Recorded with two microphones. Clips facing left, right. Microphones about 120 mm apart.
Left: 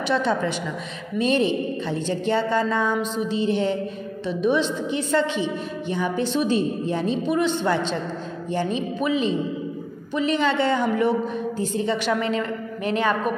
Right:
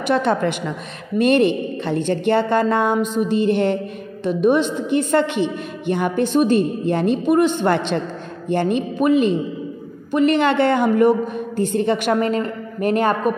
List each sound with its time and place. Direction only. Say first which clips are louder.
0.1 s a woman's voice: right 5 dB; 60° right (ahead or behind)